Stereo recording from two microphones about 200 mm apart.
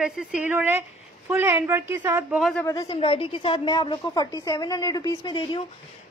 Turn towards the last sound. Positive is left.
turn(degrees=25)  # may be behind; listen again after turning